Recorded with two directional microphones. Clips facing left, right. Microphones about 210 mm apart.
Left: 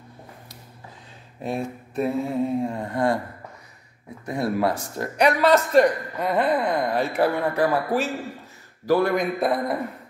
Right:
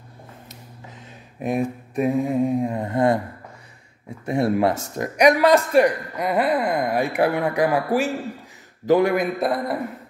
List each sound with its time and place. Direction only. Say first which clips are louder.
1.4 s a man's voice: right 5 dB; 15° right (ahead or behind)
4.3 s a man's voice: right 4 dB; 25° right (ahead or behind)
9.1 s a man's voice: right 1 dB; 5° right (ahead or behind)